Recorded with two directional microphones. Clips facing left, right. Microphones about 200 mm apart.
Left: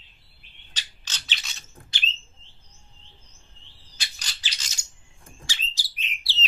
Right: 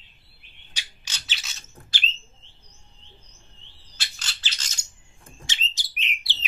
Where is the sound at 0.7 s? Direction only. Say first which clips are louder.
Even; 10° right (ahead or behind).